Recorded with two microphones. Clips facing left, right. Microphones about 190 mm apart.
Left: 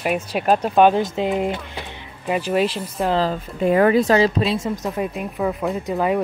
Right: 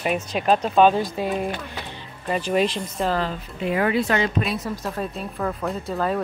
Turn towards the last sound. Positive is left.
turn(degrees=15)  # may be behind; listen again after turning